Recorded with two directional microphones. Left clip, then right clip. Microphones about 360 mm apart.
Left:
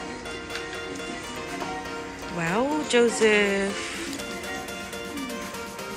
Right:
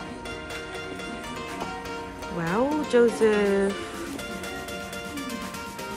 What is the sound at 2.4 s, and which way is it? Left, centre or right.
Speech, centre.